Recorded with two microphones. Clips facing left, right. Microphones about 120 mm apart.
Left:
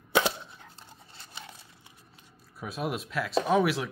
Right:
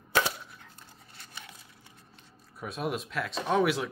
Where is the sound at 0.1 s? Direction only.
25° left (ahead or behind).